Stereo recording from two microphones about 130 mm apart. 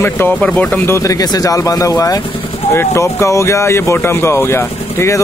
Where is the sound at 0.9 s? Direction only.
25° left (ahead or behind).